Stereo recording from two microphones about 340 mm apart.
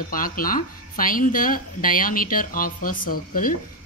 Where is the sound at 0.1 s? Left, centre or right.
Left.